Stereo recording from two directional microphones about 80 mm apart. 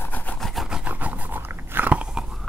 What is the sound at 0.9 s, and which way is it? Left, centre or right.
Dog, centre.